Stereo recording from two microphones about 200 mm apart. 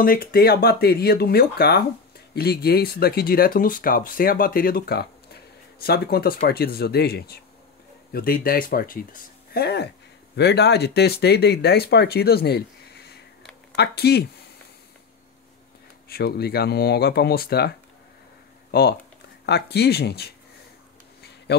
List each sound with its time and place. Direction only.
0.0 s speech: 45° left (ahead or behind)
16.1 s speech: 50° left (ahead or behind)
21.5 s a sound: 55° left (ahead or behind)